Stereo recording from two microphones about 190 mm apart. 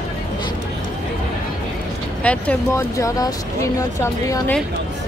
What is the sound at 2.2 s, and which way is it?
Speech, 5° left (ahead or behind).